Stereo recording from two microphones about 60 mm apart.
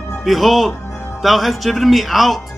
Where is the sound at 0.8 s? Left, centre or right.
Left.